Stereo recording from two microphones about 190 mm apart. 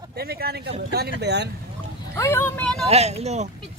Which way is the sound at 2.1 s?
15° left (ahead or behind).